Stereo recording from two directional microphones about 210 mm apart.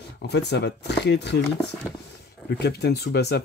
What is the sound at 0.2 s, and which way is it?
Speech, 55° left (ahead or behind).